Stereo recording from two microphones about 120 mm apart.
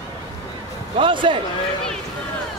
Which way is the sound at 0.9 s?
45° right (ahead or behind).